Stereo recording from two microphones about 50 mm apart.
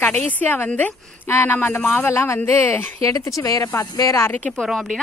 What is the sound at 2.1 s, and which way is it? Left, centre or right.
Speech, left.